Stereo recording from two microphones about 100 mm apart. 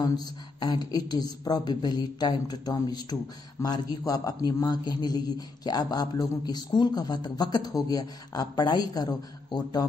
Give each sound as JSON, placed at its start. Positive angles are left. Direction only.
{"t": 0.0, "sound": "a man's voice", "side_deg": 45}